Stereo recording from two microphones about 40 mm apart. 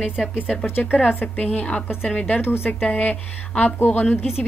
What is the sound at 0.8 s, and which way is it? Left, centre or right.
Speech, left.